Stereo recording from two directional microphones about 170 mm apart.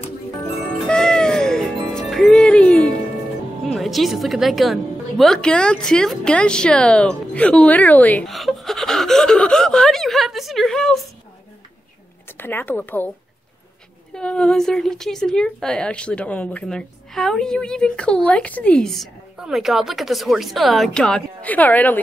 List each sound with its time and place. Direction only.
0.8 s music: 5° left (ahead or behind)
3.6 s a woman's voice: centre (ahead or behind)
12.4 s speech: 10° left (ahead or behind)
14.1 s a woman's voice: 5° left (ahead or behind)